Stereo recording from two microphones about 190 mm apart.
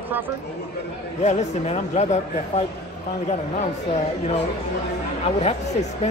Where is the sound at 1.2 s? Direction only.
35° left (ahead or behind).